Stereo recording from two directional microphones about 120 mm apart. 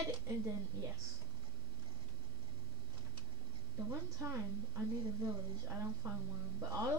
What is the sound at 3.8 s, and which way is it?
A child's voice, 25° right (ahead or behind).